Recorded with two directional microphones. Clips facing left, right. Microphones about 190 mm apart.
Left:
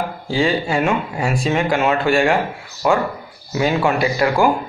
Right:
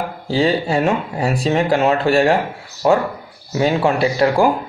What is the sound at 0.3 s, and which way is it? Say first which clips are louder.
A man's voice: right 2 dB; 35° right (ahead or behind).